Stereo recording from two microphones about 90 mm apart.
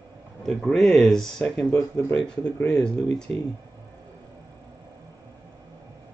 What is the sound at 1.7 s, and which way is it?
Speech, 30° left (ahead or behind).